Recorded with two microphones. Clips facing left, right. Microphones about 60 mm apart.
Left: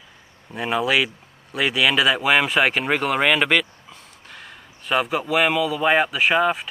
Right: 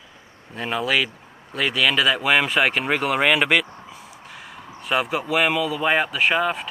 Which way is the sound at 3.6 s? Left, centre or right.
Right.